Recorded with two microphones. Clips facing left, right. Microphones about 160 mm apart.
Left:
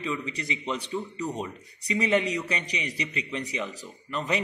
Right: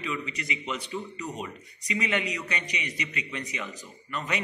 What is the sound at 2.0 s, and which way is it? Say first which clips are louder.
A man's voice: left 7 dB; 35° left (ahead or behind).